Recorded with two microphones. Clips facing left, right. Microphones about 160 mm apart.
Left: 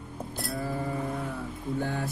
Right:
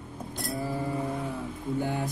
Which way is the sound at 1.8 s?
15° right (ahead or behind).